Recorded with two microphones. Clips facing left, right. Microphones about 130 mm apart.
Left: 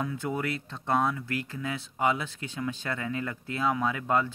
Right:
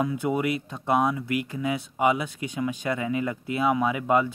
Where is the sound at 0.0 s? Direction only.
15° right (ahead or behind).